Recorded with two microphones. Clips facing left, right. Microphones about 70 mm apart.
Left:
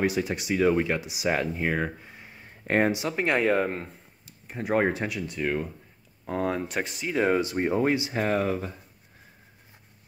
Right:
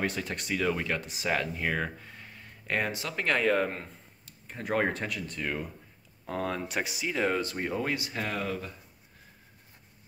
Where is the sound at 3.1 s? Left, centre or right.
Centre.